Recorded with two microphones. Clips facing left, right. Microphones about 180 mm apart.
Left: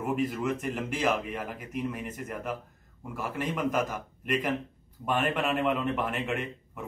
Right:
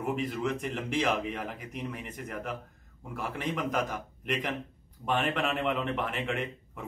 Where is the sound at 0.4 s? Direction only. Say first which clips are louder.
Left 1 dB; 5° left (ahead or behind).